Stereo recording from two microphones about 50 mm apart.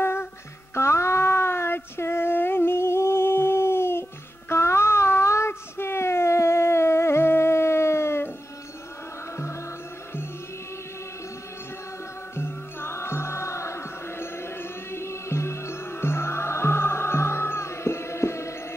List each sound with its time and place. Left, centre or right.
0.0 s music: left
0.7 s child singing: left
4.5 s a sound: left
12.4 s music: left